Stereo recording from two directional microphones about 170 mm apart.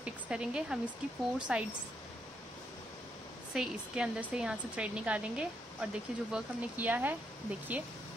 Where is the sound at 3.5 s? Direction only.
5° right (ahead or behind).